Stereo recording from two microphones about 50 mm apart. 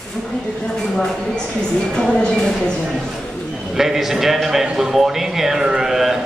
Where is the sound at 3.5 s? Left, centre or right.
Centre.